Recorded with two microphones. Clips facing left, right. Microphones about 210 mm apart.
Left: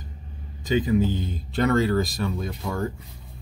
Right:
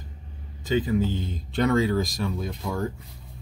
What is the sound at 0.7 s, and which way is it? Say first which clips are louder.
Speech: left 2 dB; 15° left (ahead or behind).